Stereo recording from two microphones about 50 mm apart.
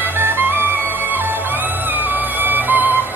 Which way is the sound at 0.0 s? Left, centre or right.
Right.